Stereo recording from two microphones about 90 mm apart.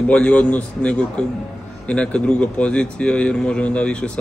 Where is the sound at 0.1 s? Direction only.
15° left (ahead or behind).